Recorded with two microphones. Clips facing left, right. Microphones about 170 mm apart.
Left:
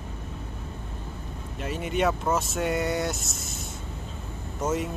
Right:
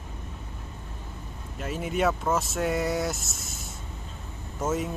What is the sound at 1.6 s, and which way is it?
Speech, centre (ahead or behind).